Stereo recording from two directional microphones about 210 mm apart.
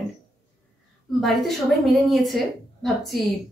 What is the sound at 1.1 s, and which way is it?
A woman's voice, centre (ahead or behind).